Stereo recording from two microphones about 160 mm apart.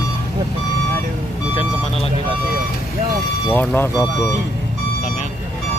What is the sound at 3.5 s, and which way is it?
Speech, 10° left (ahead or behind).